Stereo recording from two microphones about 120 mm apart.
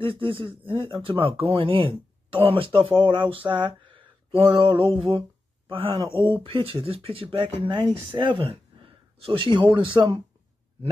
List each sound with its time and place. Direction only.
0.0 s speech: 50° right (ahead or behind)
3.9 s a sound: 45° right (ahead or behind)
5.7 s speech: 50° right (ahead or behind)
6.1 s speech: 20° left (ahead or behind)
6.4 s speech: 50° right (ahead or behind)